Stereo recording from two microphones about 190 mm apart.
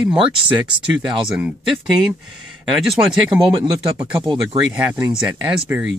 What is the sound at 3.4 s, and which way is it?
Speech, 25° right (ahead or behind).